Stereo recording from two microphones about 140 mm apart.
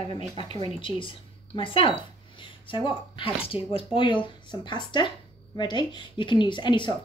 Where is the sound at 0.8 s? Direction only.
40° left (ahead or behind).